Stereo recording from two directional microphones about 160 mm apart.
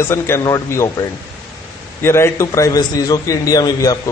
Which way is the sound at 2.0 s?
15° left (ahead or behind).